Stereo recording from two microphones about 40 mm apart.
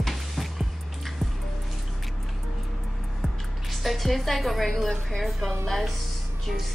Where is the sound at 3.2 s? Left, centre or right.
Centre.